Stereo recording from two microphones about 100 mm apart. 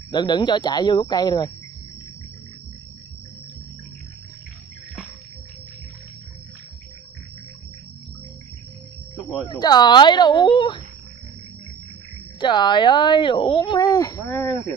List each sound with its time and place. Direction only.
0.1 s speech: 45° left (ahead or behind)
9.5 s speech: 45° left (ahead or behind)
12.4 s speech: 50° left (ahead or behind)
13.7 s speech: 35° left (ahead or behind)
14.2 s speech: 20° left (ahead or behind)